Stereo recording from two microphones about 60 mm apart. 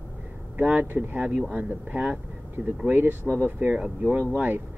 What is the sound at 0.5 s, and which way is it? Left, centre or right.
Speech, right.